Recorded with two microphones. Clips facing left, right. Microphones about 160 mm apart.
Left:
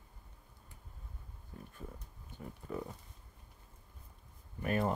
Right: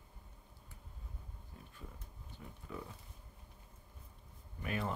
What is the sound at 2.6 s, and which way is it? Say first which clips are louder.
Pig: left 6 dB; 45° left (ahead or behind).